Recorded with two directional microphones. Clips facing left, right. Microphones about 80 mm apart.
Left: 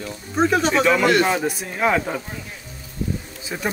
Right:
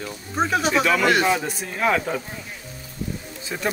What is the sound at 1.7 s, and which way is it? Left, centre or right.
Speech, centre.